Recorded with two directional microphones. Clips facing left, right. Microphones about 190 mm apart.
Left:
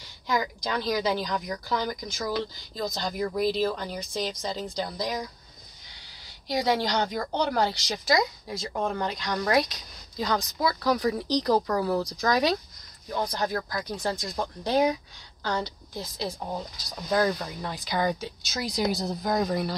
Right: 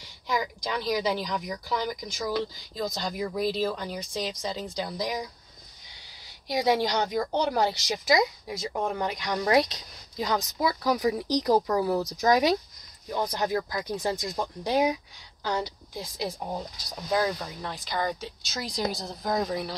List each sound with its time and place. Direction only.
0.3 s a woman's voice: 5° right (ahead or behind)
6.5 s a woman's voice: 20° right (ahead or behind); by 19.7 s centre (ahead or behind)